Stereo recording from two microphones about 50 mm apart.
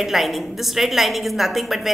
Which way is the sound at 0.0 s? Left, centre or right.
Centre.